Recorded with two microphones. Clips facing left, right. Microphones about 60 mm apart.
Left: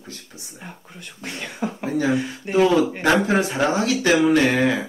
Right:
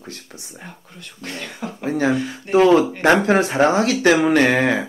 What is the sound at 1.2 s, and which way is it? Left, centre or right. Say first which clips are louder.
Speech: left 2 dB; centre.